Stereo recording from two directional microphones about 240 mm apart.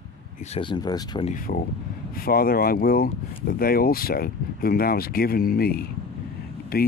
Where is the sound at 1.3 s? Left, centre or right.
Left.